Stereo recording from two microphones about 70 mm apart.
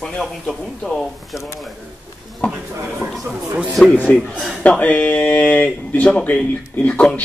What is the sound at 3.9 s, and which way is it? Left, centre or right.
Speech, centre.